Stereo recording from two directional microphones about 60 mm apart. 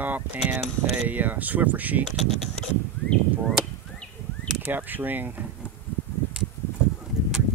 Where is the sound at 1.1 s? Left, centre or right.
Right.